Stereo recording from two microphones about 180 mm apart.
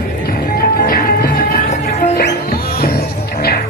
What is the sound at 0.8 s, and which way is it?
Music, 50° left (ahead or behind).